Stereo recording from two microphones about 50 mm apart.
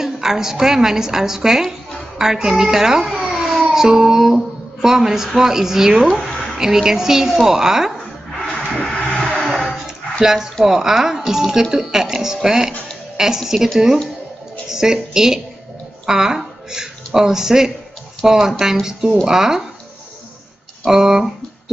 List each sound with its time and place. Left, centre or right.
0.0 s a woman's voice: centre
3.3 s a sound: centre
4.8 s a woman's voice: centre
8.5 s music: centre
9.3 s a sound: centre
10.2 s a woman's voice: centre
14.7 s a woman's voice: centre
20.8 s a woman's voice: centre